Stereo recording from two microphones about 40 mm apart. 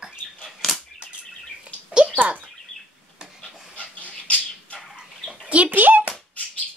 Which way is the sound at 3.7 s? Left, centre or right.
Left.